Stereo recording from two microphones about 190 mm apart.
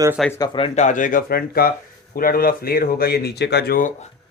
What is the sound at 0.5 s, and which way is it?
Speech, 35° left (ahead or behind).